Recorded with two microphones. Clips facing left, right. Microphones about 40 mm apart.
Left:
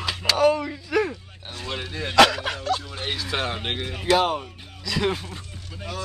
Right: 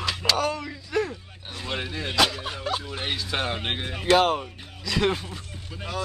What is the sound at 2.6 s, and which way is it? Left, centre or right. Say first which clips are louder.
Speech: left 2 dB; centre.